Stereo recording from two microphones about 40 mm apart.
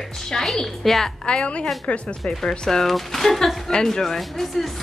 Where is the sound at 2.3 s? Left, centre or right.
Centre.